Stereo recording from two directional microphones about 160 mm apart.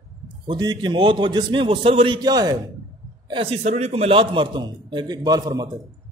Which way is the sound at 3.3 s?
35° right (ahead or behind).